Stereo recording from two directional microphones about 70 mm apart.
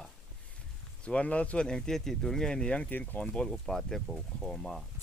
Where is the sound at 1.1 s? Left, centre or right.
Centre.